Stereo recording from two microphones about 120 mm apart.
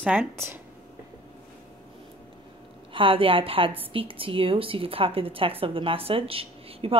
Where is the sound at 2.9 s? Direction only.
45° right (ahead or behind).